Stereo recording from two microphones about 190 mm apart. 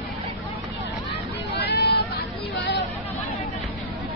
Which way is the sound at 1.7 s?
60° left (ahead or behind).